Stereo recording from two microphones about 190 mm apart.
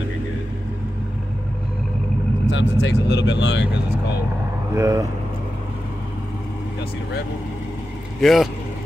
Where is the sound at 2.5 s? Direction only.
65° left (ahead or behind).